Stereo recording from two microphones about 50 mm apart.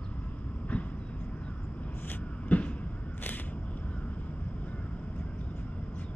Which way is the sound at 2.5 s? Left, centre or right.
Left.